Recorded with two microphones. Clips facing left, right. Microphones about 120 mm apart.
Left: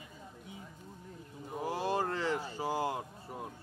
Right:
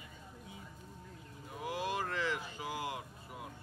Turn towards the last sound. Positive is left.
turn(degrees=35)  # may be behind; listen again after turning